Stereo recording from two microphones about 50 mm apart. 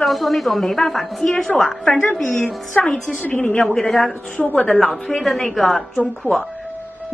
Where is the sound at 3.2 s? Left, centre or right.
Left.